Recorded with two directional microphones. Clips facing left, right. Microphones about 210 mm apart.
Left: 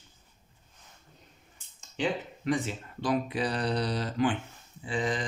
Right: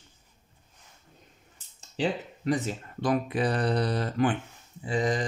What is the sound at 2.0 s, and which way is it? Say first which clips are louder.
Speech: right 2 dB; 35° right (ahead or behind).